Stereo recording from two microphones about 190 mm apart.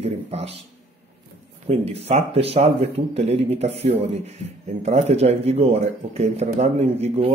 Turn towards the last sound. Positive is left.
turn(degrees=-35)  # may be behind; listen again after turning